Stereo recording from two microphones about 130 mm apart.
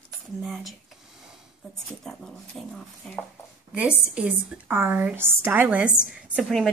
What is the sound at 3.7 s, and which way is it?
A woman's voice, 10° right (ahead or behind).